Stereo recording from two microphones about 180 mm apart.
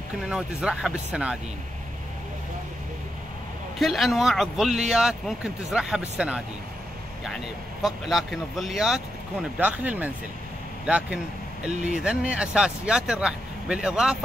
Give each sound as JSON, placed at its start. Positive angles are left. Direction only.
{"t": 0.3, "sound": "speech", "side_deg": -5}
{"t": 3.8, "sound": "speech", "side_deg": 0}
{"t": 7.8, "sound": "speech", "side_deg": 0}
{"t": 11.7, "sound": "speech", "side_deg": -40}
{"t": 12.0, "sound": "speech", "side_deg": -5}